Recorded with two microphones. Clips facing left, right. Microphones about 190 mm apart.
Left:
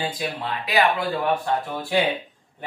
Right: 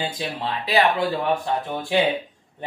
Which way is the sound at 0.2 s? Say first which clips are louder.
Right 1 dB; 30° right (ahead or behind).